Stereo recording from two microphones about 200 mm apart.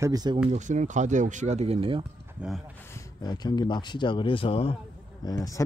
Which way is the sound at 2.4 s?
5° right (ahead or behind).